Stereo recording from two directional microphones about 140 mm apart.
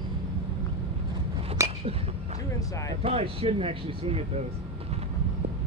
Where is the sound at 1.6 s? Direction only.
20° right (ahead or behind).